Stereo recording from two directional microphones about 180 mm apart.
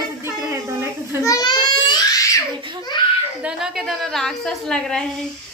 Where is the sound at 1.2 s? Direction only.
20° left (ahead or behind).